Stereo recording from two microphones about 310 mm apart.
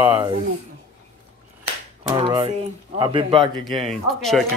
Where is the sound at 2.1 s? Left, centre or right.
Centre.